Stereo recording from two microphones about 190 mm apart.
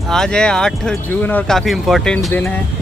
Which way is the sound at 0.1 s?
5° left (ahead or behind).